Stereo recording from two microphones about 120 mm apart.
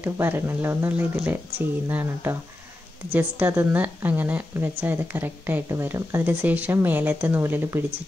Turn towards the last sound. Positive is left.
turn(degrees=-20)  # may be behind; listen again after turning